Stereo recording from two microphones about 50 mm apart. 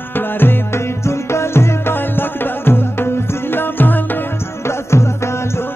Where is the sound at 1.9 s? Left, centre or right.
Left.